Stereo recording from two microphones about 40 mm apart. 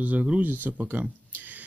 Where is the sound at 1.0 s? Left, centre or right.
Right.